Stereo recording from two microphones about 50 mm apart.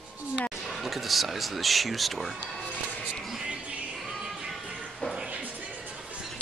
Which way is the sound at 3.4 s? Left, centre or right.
Right.